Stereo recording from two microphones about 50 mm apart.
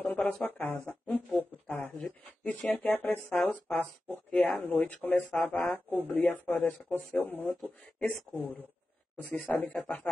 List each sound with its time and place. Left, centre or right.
0.0 s a sound: left
0.3 s speech: left
9.1 s speech: left